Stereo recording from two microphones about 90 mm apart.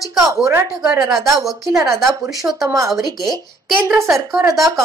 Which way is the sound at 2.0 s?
Centre (ahead or behind).